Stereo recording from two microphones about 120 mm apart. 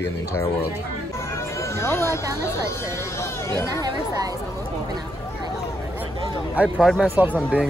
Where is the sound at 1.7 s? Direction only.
20° left (ahead or behind).